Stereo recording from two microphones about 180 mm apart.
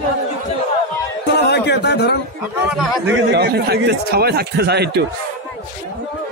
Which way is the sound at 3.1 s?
65° right (ahead or behind).